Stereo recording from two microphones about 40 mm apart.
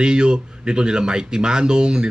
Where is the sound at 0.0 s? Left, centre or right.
Right.